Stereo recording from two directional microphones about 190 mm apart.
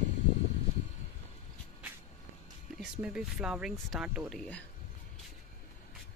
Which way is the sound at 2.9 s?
5° right (ahead or behind).